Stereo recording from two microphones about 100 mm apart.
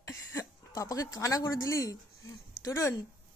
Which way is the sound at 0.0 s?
30° left (ahead or behind).